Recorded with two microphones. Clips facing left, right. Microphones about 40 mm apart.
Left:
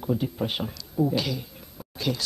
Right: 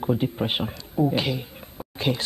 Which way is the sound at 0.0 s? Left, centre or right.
Right.